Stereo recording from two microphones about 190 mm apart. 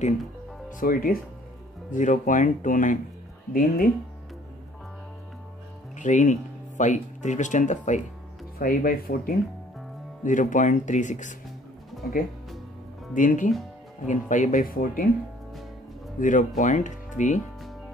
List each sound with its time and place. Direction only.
0.7 s speech: 45° left (ahead or behind)
5.9 s speech: 40° left (ahead or behind)
8.5 s speech: 50° left (ahead or behind)
13.1 s speech: 45° left (ahead or behind)
16.2 s speech: 45° left (ahead or behind)